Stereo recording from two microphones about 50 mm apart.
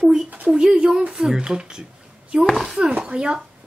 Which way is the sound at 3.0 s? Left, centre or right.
Centre.